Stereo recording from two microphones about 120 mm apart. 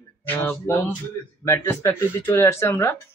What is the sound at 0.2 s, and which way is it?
Speech, 20° left (ahead or behind).